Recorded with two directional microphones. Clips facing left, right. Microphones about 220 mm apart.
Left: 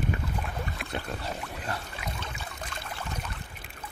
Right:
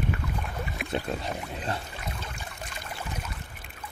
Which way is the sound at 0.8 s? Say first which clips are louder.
Right 4 dB; 20° right (ahead or behind).